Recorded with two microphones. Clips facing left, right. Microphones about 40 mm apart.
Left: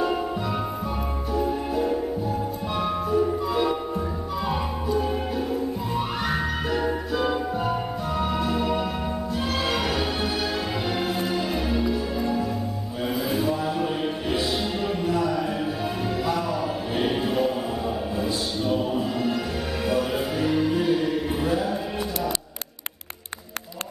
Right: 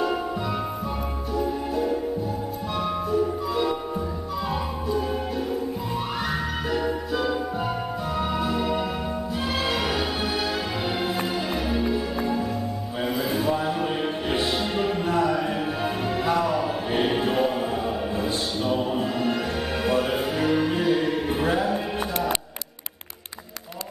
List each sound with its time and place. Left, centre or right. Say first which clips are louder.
1.3 s music: left 1 dB; centre
6.2 s music: left 1 dB; centre
8.2 s music: left 1 dB; centre
11.9 s music: even; centre
13.4 s a sound: even; centre
15.0 s music: even; right
19.8 s music: right 1 dB; right